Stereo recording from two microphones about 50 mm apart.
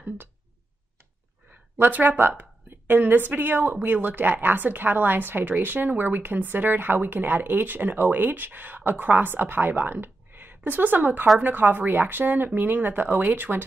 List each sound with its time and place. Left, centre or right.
1.8 s a woman's voice: right